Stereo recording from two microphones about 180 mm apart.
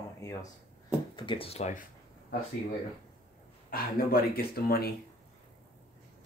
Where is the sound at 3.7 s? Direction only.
55° left (ahead or behind).